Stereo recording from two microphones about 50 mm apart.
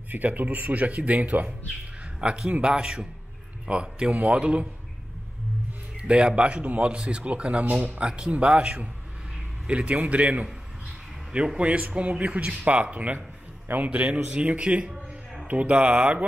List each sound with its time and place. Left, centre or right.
0.1 s speech: right
2.1 s speech: centre
5.9 s speech: right